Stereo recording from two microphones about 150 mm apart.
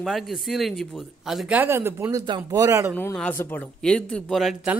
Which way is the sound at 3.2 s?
10° left (ahead or behind).